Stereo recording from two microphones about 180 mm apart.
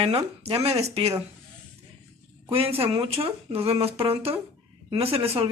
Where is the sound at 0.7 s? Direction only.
35° right (ahead or behind).